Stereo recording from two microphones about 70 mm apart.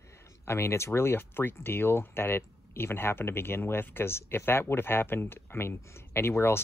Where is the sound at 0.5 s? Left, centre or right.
Left.